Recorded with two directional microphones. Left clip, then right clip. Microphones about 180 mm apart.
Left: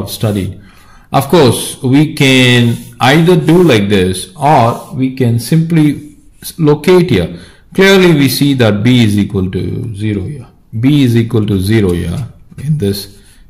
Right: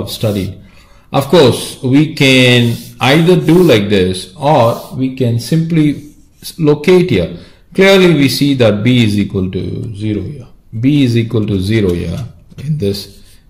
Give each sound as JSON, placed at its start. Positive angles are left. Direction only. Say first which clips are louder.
{"t": 0.0, "sound": "a man's voice", "louder": "even", "side_deg": 35}